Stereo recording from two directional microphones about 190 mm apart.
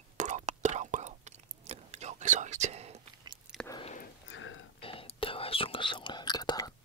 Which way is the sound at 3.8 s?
40° left (ahead or behind).